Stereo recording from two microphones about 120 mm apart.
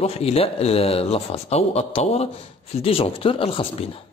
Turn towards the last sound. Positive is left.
turn(degrees=55)  # may be behind; listen again after turning